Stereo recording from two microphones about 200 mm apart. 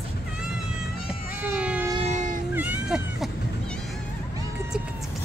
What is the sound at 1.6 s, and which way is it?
Train, 5° right (ahead or behind).